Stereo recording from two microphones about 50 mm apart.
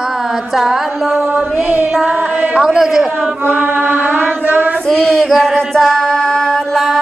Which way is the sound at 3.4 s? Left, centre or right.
Right.